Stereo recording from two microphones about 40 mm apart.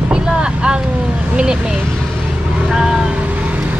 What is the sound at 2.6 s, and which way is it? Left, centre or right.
Vehicle, centre.